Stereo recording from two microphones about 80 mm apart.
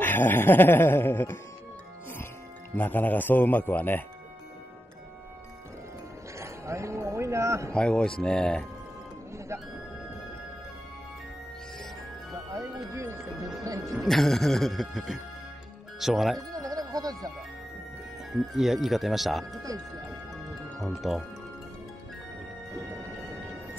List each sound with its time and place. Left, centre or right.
0.0 s speech: left
2.7 s speech: left
6.3 s speech: right
7.7 s speech: centre
12.5 s speech: right
13.9 s speech: centre
16.3 s music: right
18.3 s speech: centre
20.8 s speech: centre
22.8 s music: right